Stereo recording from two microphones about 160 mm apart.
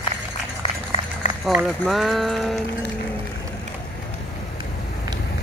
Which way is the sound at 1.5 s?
Centre (ahead or behind).